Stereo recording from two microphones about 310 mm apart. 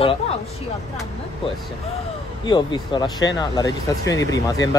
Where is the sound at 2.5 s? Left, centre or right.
Centre.